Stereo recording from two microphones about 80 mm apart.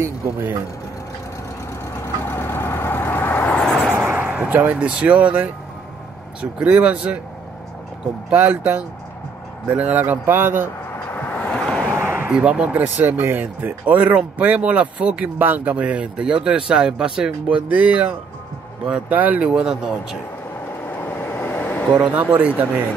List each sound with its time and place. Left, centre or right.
0.0 s a man's voice: right
2.0 s vehicle: left
3.5 s vehicle: centre
4.2 s a sound: centre
4.5 s speech: right
6.6 s speech: centre
8.3 s a man's voice: right
11.1 s vehicle: centre
12.0 s a sound: right
12.3 s speech: centre
20.9 s vehicle: left
21.9 s a man's voice: centre